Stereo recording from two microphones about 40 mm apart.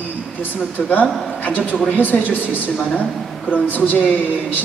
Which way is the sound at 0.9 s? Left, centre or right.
Left.